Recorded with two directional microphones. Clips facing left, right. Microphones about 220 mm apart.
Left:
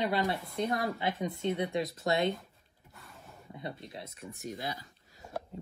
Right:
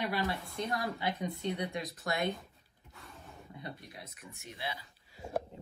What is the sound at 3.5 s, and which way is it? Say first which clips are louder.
Speech: left 5 dB; 25° left (ahead or behind).